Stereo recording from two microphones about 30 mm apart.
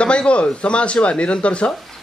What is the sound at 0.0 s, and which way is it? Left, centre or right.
A man's voice, left.